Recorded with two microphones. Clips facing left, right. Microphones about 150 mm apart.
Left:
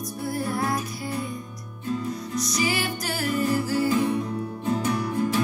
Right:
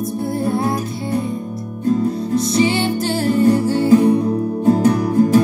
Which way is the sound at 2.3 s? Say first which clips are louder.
Right 10 dB; 25° right (ahead or behind).